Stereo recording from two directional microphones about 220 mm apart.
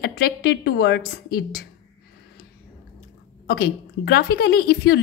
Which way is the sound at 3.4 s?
45° left (ahead or behind).